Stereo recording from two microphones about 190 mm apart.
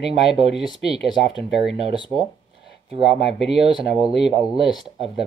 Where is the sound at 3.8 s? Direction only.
30° right (ahead or behind).